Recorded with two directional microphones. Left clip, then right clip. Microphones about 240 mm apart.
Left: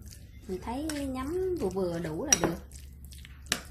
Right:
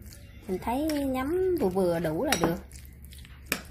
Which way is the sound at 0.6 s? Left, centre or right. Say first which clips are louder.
Right 7 dB; right.